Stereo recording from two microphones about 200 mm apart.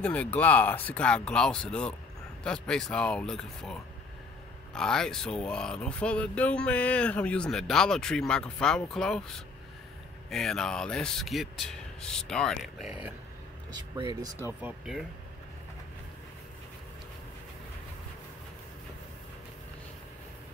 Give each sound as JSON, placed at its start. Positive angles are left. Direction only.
{"t": 0.0, "sound": "speech", "side_deg": 5}
{"t": 10.3, "sound": "speech", "side_deg": 5}
{"t": 13.9, "sound": "speech", "side_deg": -20}
{"t": 14.6, "sound": "speech", "side_deg": 0}